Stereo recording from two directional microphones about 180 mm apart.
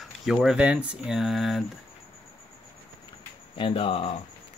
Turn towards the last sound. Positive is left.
turn(degrees=30)  # may be behind; listen again after turning